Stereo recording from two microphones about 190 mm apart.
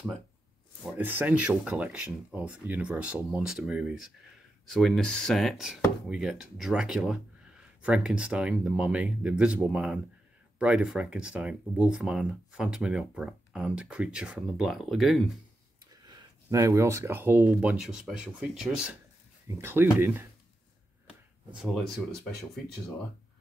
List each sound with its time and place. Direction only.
0.8 s speech: 10° right (ahead or behind)
15.9 s speech: 20° right (ahead or behind)
21.5 s speech: 5° right (ahead or behind)